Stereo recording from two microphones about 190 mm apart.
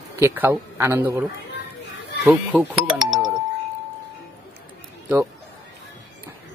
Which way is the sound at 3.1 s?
Centre (ahead or behind).